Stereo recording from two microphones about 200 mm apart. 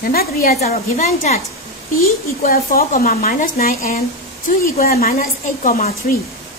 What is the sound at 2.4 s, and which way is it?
A woman's voice, 45° left (ahead or behind).